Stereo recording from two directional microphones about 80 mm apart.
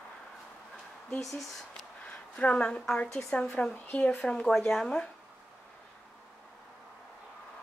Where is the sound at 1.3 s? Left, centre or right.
Centre.